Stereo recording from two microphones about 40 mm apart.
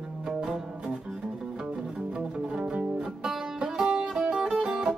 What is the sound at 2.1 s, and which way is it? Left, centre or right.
Music, centre.